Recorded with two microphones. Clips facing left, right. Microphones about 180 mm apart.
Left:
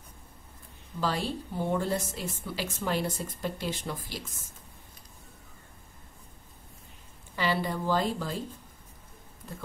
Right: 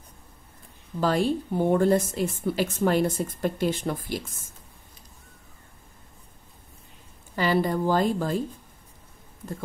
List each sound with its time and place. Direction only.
1.0 s a woman's voice: 50° right (ahead or behind)
7.3 s a woman's voice: 45° right (ahead or behind)